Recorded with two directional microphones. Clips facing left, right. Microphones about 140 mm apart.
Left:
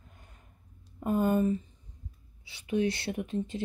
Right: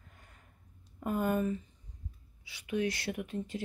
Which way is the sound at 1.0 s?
25° left (ahead or behind).